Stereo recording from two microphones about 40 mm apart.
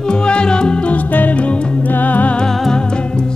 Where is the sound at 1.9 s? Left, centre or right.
Left.